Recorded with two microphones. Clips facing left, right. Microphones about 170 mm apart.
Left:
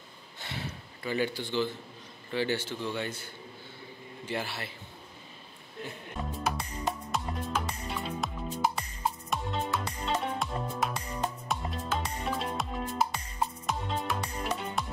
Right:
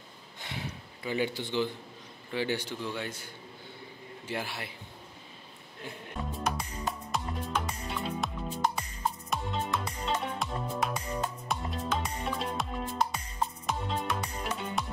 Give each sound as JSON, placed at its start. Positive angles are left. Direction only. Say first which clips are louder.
{"t": 0.4, "sound": "gasp", "louder": "even", "side_deg": -15}
{"t": 2.3, "sound": "speech", "louder": "left 1 dB", "side_deg": -15}
{"t": 4.3, "sound": "speech", "louder": "left 1 dB", "side_deg": -10}
{"t": 6.3, "sound": "music", "louder": "even", "side_deg": 0}